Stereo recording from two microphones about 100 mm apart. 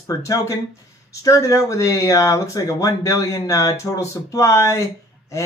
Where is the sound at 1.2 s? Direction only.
35° left (ahead or behind).